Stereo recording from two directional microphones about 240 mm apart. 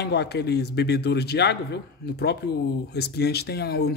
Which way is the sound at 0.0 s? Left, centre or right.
Left.